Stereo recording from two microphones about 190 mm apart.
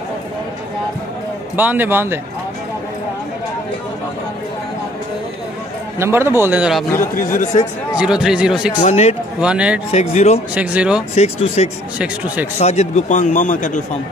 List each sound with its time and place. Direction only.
1.6 s a man's voice: 10° right (ahead or behind)
5.9 s a man's voice: 15° right (ahead or behind)
7.0 s speech: 45° left (ahead or behind)
8.0 s speech: 5° right (ahead or behind)
8.8 s speech: 35° left (ahead or behind)
9.4 s speech: 5° right (ahead or behind)
9.8 s speech: 35° left (ahead or behind)
10.5 s a man's voice: 5° right (ahead or behind)
11.1 s speech: 35° left (ahead or behind)